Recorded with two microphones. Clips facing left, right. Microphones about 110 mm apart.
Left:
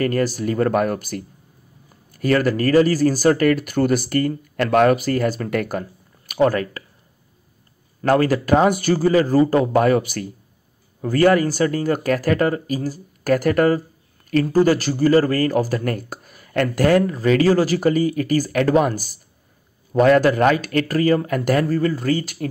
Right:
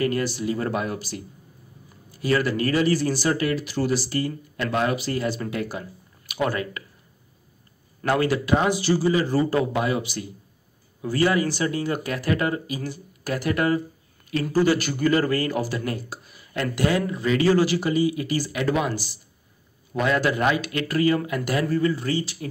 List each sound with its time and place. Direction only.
0.0 s speech: 45° left (ahead or behind)
8.1 s speech: 40° left (ahead or behind)
9.7 s speech: 50° left (ahead or behind)